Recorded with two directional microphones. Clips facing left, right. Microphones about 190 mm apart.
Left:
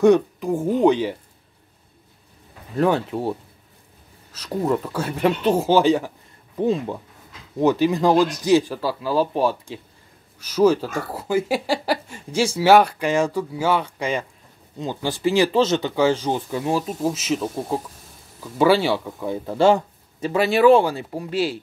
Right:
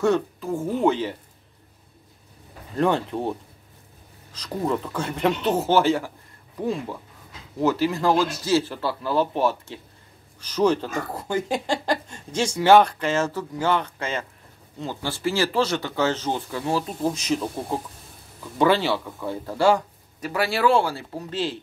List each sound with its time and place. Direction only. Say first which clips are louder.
0.0 s speech: left 6 dB; 15° left (ahead or behind)
2.7 s speech: left 2 dB; 5° left (ahead or behind)
16.8 s speech: left 2 dB; 5° left (ahead or behind)